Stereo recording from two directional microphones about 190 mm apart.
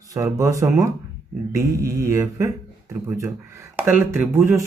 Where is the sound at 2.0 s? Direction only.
15° right (ahead or behind).